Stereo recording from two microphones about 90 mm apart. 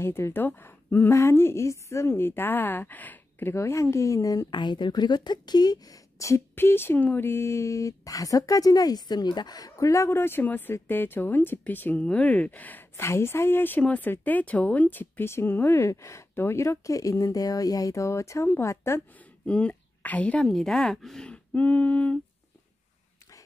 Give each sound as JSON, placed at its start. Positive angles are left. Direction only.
{"t": 0.0, "sound": "a woman's voice", "side_deg": 25}
{"t": 4.5, "sound": "a woman's voice", "side_deg": 60}
{"t": 19.4, "sound": "speech", "side_deg": 15}
{"t": 20.4, "sound": "speech", "side_deg": 5}